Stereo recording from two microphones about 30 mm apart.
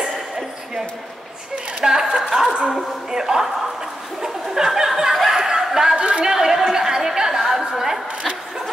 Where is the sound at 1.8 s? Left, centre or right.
Right.